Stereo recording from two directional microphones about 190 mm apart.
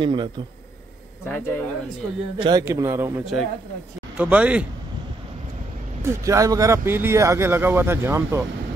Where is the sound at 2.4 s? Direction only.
20° right (ahead or behind).